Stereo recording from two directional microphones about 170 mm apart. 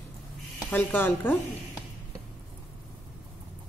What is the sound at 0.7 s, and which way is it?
Speech, 10° left (ahead or behind).